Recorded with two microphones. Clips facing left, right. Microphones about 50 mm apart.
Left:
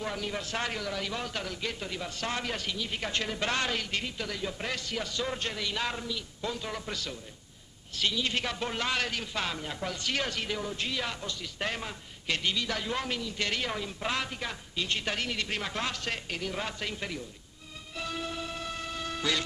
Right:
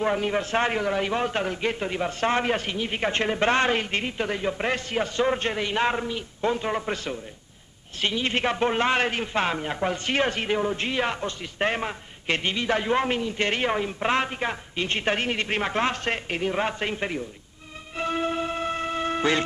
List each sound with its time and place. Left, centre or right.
0.0 s a man's voice: right
17.9 s music: right